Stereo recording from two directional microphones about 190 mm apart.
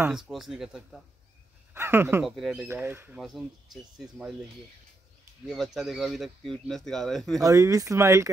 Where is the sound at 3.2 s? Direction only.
Centre (ahead or behind).